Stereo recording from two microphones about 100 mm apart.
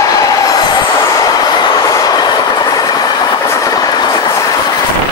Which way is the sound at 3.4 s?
30° left (ahead or behind).